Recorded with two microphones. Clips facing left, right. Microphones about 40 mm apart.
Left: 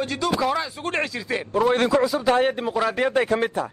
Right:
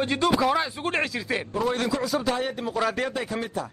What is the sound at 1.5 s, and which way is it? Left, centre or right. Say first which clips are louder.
Speech: left 8 dB; left.